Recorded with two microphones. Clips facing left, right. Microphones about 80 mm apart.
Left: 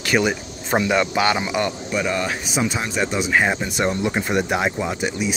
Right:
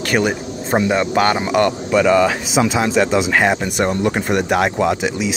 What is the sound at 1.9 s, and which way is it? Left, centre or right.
Speech, right.